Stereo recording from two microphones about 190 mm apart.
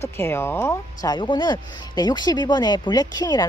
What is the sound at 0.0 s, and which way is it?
Speech, 10° left (ahead or behind).